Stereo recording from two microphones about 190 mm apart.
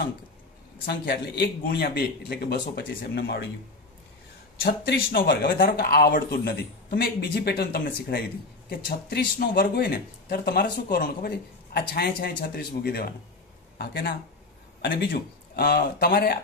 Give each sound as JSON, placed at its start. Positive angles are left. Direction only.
{"t": 0.8, "sound": "speech", "side_deg": 55}
{"t": 4.6, "sound": "speech", "side_deg": 55}